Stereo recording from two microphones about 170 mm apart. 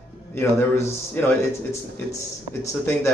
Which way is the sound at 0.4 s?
15° left (ahead or behind).